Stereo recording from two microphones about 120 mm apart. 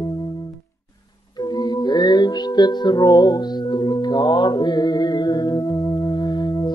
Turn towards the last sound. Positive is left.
turn(degrees=35)  # may be behind; listen again after turning